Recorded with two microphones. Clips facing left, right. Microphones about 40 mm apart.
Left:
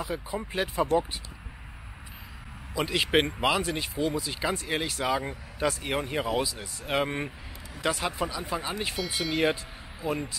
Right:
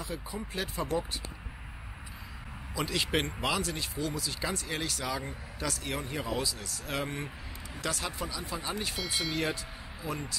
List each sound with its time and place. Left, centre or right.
0.1 s speech: left
2.7 s speech: left
8.9 s speech: centre
10.0 s speech: centre